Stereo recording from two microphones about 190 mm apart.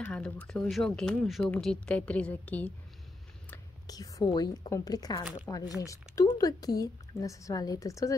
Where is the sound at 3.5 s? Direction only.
20° left (ahead or behind).